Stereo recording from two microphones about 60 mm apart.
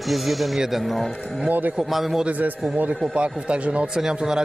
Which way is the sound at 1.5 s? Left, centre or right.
Right.